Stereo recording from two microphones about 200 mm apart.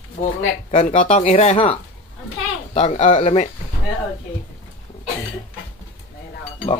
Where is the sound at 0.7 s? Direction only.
35° left (ahead or behind).